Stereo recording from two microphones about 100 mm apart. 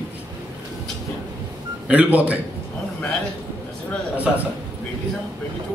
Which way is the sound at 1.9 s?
15° right (ahead or behind).